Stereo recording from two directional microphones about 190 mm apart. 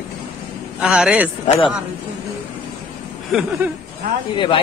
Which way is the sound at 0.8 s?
5° right (ahead or behind).